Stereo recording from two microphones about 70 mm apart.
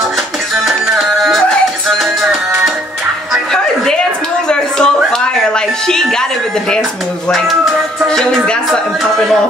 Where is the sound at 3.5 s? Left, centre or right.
Centre.